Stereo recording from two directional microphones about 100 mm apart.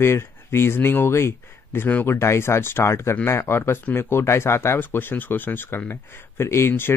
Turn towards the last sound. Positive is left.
turn(degrees=25)  # may be behind; listen again after turning